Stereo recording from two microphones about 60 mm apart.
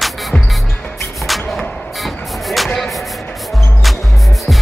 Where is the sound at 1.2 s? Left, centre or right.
Centre.